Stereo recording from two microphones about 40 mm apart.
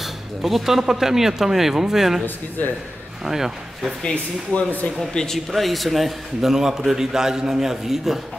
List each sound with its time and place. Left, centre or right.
0.0 s a man's voice: centre
2.6 s a man's voice: left
3.3 s a man's voice: centre
4.0 s speech: left
5.1 s speech: centre
5.5 s a man's voice: centre